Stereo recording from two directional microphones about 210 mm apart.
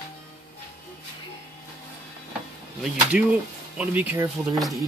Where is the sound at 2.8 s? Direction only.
5° right (ahead or behind).